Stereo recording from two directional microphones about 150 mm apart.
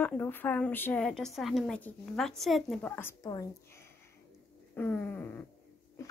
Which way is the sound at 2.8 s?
15° left (ahead or behind).